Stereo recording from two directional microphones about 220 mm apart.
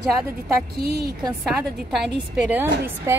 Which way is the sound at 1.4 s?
Centre (ahead or behind).